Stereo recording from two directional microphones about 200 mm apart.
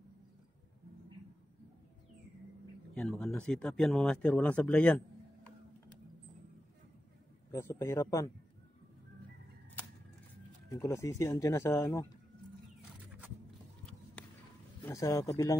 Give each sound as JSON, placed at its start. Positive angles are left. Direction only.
{"t": 2.9, "sound": "speech", "side_deg": 5}
{"t": 7.5, "sound": "speech", "side_deg": 15}
{"t": 10.7, "sound": "speech", "side_deg": 15}
{"t": 14.8, "sound": "speech", "side_deg": 15}